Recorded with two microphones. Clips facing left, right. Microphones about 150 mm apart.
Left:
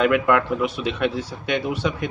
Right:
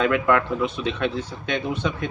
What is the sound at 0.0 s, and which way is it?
Speech, 10° left (ahead or behind).